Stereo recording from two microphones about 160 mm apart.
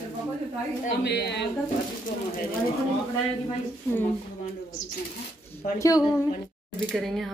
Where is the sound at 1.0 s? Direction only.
90° left.